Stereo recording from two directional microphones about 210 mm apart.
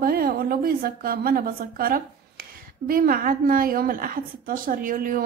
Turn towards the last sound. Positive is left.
turn(degrees=-40)  # may be behind; listen again after turning